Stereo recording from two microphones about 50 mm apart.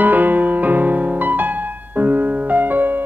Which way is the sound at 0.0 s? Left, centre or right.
Right.